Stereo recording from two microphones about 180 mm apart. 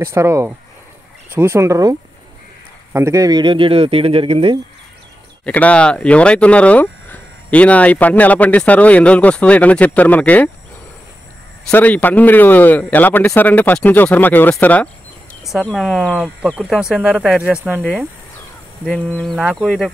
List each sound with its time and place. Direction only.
0.0 s speech: 15° right (ahead or behind)
5.4 s speech: 10° left (ahead or behind)
11.7 s speech: 10° left (ahead or behind); by 18.0 s 10° right (ahead or behind)
18.9 s speech: centre (ahead or behind)